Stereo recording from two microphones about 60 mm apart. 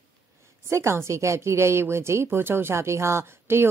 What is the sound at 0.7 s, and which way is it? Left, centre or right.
Speech, right.